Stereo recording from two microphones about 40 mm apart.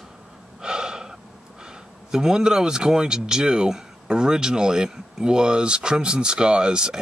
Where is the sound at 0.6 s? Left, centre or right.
Centre.